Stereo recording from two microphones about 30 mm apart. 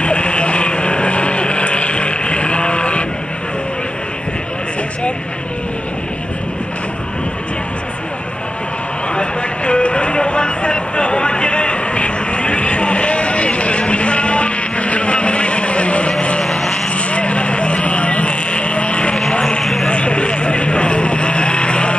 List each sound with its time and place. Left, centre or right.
0.0 s vehicle: left
9.1 s a sound: left
16.4 s vehicle: centre
16.9 s vehicle: left
19.6 s vehicle: centre
19.9 s vehicle: left